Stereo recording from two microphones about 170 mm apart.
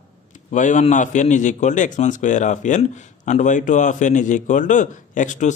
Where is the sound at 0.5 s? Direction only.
45° left (ahead or behind).